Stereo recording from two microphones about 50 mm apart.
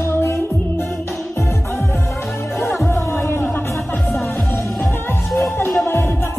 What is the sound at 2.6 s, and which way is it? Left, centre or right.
Music, left.